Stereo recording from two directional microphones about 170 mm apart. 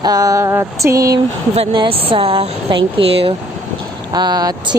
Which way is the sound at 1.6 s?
35° right (ahead or behind).